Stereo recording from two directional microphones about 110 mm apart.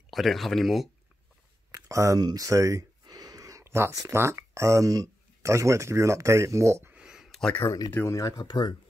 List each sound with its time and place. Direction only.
0.1 s speech: centre (ahead or behind)
1.7 s speech: 30° right (ahead or behind)
6.9 s a sound: 5° right (ahead or behind)
7.5 s speech: 20° left (ahead or behind); by 8.7 s 40° left (ahead or behind)